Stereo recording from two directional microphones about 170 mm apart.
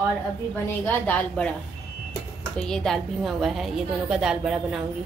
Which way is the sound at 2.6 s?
5° left (ahead or behind).